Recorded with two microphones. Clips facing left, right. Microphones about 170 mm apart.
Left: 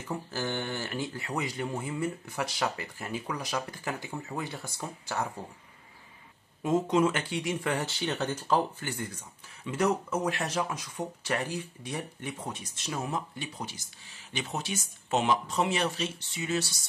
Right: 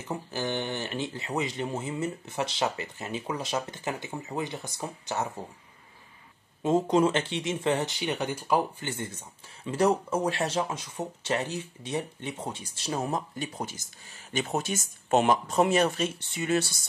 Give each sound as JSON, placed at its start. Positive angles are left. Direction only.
{"t": 0.3, "sound": "speech", "side_deg": -20}
{"t": 6.6, "sound": "speech", "side_deg": -30}
{"t": 8.8, "sound": "speech", "side_deg": -25}